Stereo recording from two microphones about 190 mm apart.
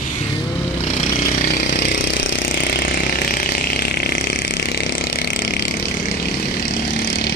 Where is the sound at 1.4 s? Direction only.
60° left (ahead or behind).